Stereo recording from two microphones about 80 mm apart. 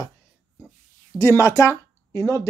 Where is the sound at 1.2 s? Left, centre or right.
Left.